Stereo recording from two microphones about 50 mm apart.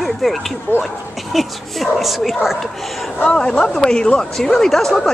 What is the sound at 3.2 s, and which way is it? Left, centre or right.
Speech, centre.